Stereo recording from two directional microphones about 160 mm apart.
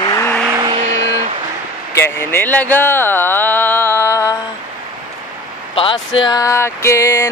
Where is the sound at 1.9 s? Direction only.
15° left (ahead or behind).